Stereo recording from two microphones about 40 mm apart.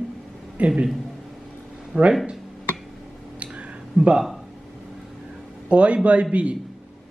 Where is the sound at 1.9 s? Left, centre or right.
Right.